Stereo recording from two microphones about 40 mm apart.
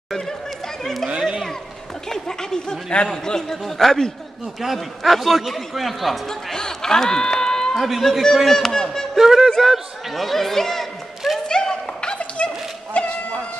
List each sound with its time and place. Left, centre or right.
2.0 s a sound: centre
3.3 s a man's voice: centre
4.6 s a man's voice: centre
6.5 s speech: centre
7.7 s speech: centre
9.2 s a man's voice: centre
11.4 s a sound: centre; by 13.1 s left